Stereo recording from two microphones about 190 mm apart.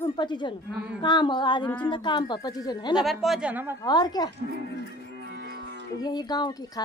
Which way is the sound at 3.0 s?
Centre (ahead or behind).